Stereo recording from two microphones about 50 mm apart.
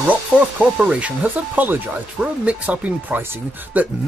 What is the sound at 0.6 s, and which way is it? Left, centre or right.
Speech, right.